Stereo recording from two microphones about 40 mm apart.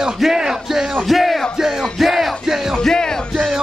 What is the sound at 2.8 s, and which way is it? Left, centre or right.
Music, centre.